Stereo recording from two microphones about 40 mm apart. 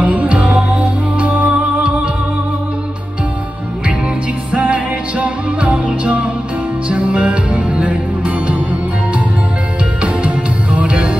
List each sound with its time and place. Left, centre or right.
0.0 s music: right
4.5 s music: right
10.0 s music: right